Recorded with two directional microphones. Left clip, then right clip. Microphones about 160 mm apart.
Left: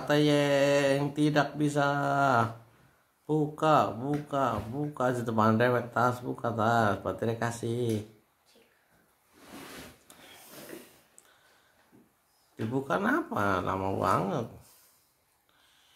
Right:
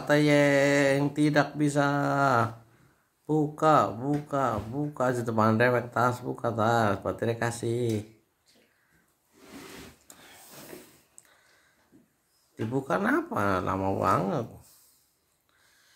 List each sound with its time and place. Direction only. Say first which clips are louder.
0.1 s speech: right 3 dB; 20° right (ahead or behind)
12.7 s speech: right 2 dB; 20° right (ahead or behind)